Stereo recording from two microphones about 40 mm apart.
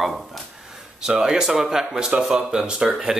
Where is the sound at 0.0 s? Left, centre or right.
Centre.